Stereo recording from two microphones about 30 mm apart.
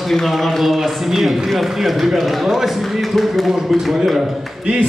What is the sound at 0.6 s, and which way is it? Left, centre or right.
A man's voice, centre.